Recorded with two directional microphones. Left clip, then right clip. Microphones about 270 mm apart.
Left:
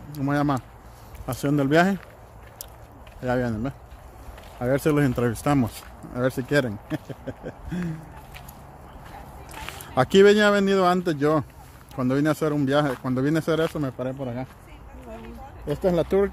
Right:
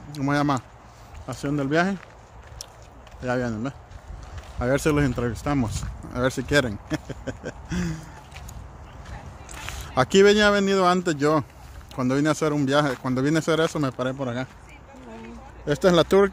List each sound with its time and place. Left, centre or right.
0.1 s speech: centre
1.2 s speech: centre
3.2 s speech: centre
5.8 s speech: centre
9.6 s speech: centre
15.6 s speech: centre